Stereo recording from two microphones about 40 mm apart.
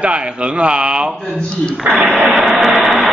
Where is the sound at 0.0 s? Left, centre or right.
Right.